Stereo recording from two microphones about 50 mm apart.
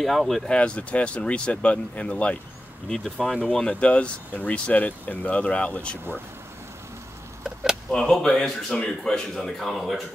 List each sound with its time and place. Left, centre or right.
0.0 s speech: centre
0.5 s speech: left
2.9 s speech: centre
3.5 s speech: left
7.9 s speech: centre